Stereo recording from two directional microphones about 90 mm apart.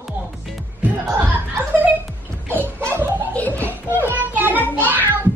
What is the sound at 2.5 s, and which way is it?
Laughter, 25° right (ahead or behind).